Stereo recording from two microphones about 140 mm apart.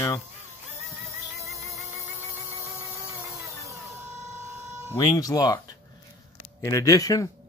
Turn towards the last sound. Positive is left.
turn(degrees=25)  # may be behind; listen again after turning